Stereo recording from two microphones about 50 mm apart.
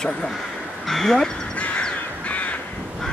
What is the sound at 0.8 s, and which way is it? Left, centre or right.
Speech, centre.